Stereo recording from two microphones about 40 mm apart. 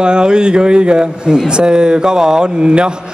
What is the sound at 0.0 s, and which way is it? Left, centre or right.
A man's voice, right.